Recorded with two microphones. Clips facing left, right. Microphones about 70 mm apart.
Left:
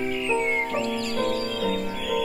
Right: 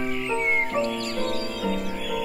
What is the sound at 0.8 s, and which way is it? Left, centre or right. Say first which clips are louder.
Music: left 2 dB; centre.